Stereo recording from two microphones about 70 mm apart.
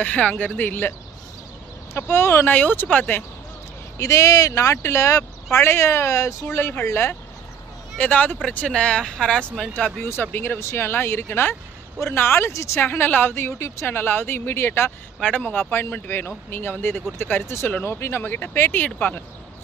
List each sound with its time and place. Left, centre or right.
0.0 s speech: centre
2.0 s a woman's voice: left
4.0 s speech: left
6.4 s a woman's voice: left
8.0 s speech: centre
10.2 s speech: left
10.6 s a woman's voice: left
13.8 s a woman's voice: left
15.2 s speech: centre
15.7 s a woman's voice: left